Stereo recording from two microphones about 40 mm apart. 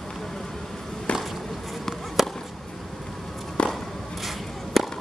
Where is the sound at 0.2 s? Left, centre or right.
Centre.